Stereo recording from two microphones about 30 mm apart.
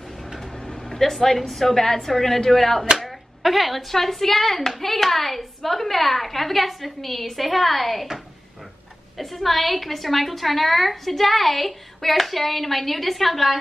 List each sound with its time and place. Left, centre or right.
0.5 s vehicle: left
0.9 s a woman's voice: centre
3.0 s a sound: centre
3.9 s a woman's voice: centre
9.1 s a woman's voice: centre